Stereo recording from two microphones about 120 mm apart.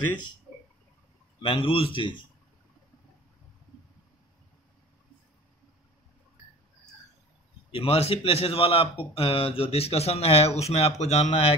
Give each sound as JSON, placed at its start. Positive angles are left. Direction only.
{"t": 1.4, "sound": "a man's voice", "side_deg": 50}
{"t": 7.7, "sound": "a man's voice", "side_deg": 50}